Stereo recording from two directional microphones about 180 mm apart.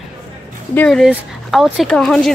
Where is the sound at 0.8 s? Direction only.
5° left (ahead or behind).